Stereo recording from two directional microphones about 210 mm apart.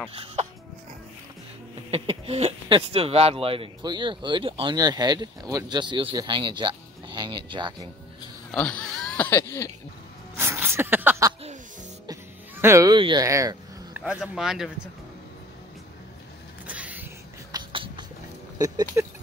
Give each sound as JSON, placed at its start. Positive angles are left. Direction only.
{"t": 0.1, "sound": "speech", "side_deg": -25}
{"t": 1.9, "sound": "speech", "side_deg": -30}
{"t": 8.5, "sound": "speech", "side_deg": 5}
{"t": 10.3, "sound": "a sound", "side_deg": -10}
{"t": 12.1, "sound": "speech", "side_deg": -15}
{"t": 16.6, "sound": "a sound", "side_deg": -5}
{"t": 18.6, "sound": "speech", "side_deg": -15}